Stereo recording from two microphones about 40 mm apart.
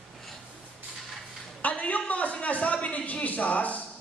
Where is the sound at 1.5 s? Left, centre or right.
Left.